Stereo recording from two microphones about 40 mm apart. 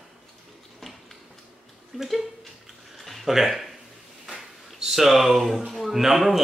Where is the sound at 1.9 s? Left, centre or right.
Centre.